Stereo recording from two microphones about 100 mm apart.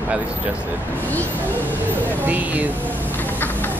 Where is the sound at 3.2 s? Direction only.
20° left (ahead or behind).